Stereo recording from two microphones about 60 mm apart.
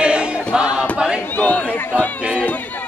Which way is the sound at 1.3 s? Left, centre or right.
Left.